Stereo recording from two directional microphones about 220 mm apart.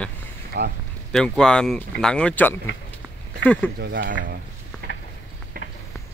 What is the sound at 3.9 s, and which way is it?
Speech, 45° right (ahead or behind).